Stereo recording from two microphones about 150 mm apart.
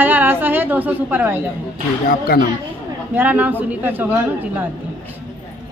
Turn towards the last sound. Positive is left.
turn(degrees=-15)  # may be behind; listen again after turning